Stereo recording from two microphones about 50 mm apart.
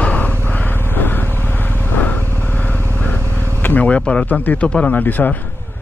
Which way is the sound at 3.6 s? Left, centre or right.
Left.